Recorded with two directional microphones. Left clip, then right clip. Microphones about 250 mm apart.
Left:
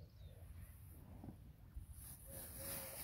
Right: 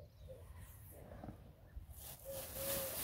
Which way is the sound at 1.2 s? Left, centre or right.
Right.